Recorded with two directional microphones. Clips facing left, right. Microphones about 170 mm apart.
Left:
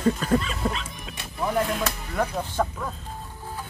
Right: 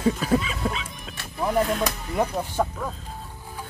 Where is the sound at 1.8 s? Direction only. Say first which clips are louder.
Right 2 dB; 20° right (ahead or behind).